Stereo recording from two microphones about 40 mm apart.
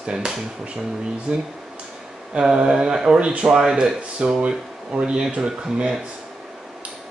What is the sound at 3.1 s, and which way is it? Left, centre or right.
Speech, right.